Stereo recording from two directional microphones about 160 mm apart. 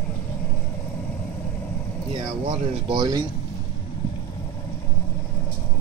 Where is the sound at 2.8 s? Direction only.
30° right (ahead or behind).